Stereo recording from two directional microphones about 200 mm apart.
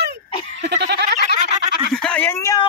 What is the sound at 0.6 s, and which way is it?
Goat, 55° right (ahead or behind).